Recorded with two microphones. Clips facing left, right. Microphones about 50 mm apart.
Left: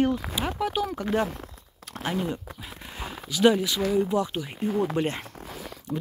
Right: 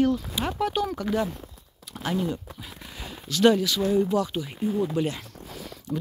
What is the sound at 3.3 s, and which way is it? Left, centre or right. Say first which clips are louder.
Speech: right 1 dB; centre.